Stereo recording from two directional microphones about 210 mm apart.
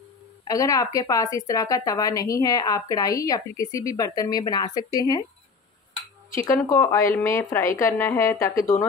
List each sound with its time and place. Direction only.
0.5 s speech: 15° left (ahead or behind)
6.6 s speech: 10° left (ahead or behind)